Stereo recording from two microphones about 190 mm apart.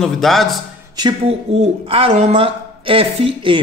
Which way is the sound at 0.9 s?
20° right (ahead or behind).